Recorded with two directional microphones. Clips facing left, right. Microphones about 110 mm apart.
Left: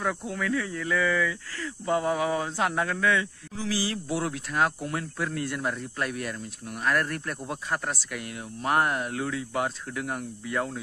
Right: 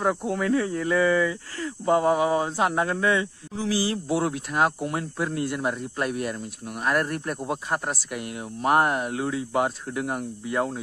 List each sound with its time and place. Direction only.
0.3 s speech: 35° right (ahead or behind)